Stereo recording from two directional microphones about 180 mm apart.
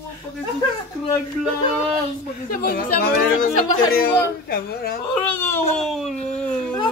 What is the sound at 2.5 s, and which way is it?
Chatter, 50° left (ahead or behind).